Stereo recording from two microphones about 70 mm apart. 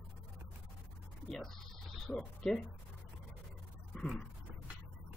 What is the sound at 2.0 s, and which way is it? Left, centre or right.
Speech, centre.